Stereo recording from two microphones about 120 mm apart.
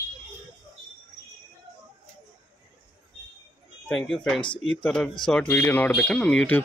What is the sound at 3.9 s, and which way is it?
Speech, 5° left (ahead or behind).